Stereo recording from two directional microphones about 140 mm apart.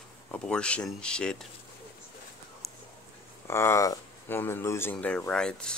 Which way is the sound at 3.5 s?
20° left (ahead or behind).